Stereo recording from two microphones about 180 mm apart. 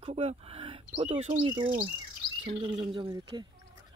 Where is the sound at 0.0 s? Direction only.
35° right (ahead or behind).